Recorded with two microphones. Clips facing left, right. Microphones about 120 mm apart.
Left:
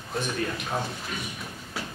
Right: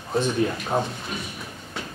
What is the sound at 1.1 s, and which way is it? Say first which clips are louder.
Thump: right 2 dB; 20° right (ahead or behind).